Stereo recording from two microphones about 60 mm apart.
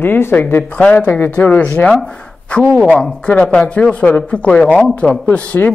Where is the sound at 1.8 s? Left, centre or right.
Centre.